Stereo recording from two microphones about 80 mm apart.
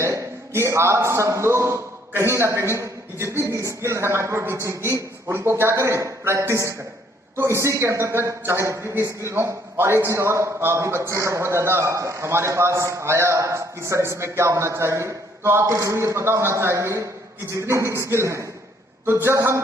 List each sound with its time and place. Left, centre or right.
0.0 s a man's voice: right